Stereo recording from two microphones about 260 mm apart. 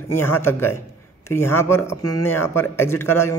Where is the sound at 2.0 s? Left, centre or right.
Left.